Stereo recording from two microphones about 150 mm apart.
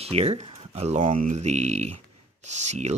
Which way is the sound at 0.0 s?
45° right (ahead or behind).